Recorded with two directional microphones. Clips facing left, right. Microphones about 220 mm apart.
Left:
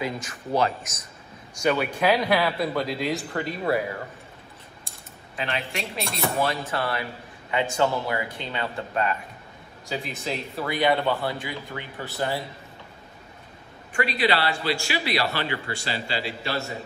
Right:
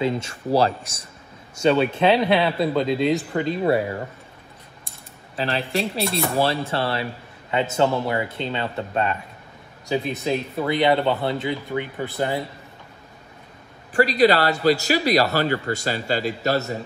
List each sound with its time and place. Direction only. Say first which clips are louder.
0.0 s speech: right 7 dB; 25° right (ahead or behind)
5.3 s speech: right 6 dB; 30° right (ahead or behind); by 12.4 s 15° right (ahead or behind)
13.9 s a man's voice: right 7 dB; 40° right (ahead or behind)